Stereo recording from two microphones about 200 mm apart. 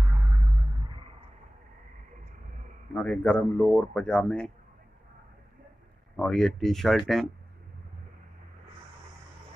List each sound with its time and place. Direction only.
0.0 s music: centre (ahead or behind)
0.3 s music: 25° right (ahead or behind)
2.9 s speech: 5° left (ahead or behind)
6.1 s speech: centre (ahead or behind)